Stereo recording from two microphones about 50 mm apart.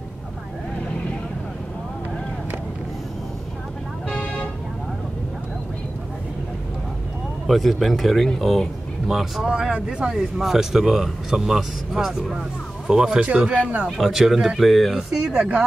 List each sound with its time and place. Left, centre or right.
4.1 s vehicle: left
7.4 s speech: centre
9.0 s speech: centre
9.5 s speech: right
13.8 s speech: centre
14.7 s speech: centre
15.3 s speech: right